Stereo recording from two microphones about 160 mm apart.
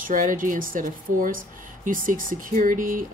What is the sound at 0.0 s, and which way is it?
Speech, 55° right (ahead or behind).